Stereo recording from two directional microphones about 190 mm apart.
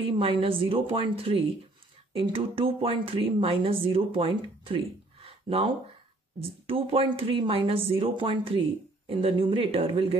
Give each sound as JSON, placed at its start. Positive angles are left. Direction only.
{"t": 0.2, "sound": "speech", "side_deg": -30}
{"t": 6.7, "sound": "speech", "side_deg": -30}